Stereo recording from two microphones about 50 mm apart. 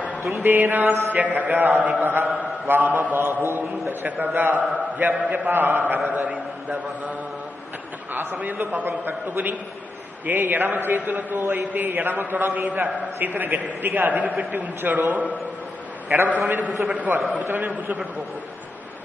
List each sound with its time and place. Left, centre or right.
0.4 s a man's voice: right
10.2 s a man's voice: right
12.6 s a man's voice: right
17.5 s a man's voice: right
17.7 s a man's voice: right